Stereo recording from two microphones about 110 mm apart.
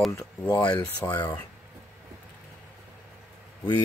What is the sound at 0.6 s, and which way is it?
Speech, 35° left (ahead or behind).